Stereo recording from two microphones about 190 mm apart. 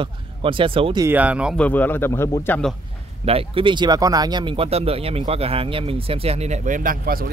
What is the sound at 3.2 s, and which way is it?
Speech, 30° right (ahead or behind).